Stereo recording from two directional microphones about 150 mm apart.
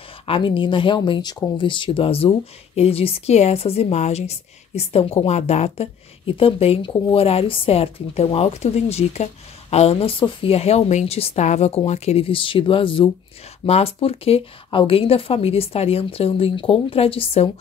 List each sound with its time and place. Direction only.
0.3 s speech: 35° left (ahead or behind)